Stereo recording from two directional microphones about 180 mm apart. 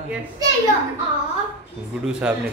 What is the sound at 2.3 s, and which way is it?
Speech, 5° right (ahead or behind).